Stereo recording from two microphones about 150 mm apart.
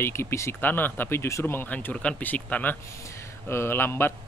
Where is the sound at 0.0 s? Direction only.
15° left (ahead or behind).